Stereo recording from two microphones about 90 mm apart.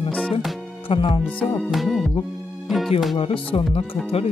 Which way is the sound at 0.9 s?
70° left (ahead or behind).